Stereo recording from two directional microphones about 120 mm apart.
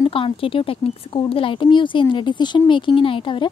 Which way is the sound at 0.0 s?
50° left (ahead or behind).